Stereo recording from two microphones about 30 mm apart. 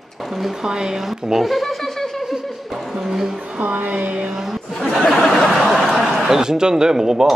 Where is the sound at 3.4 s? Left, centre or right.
Right.